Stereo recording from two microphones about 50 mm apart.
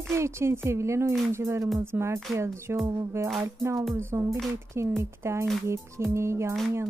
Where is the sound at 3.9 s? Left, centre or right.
Right.